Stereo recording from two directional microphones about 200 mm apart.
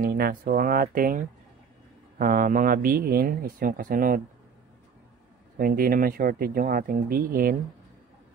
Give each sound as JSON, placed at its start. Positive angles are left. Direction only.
{"t": 0.0, "sound": "speech", "side_deg": -50}
{"t": 5.6, "sound": "speech", "side_deg": -45}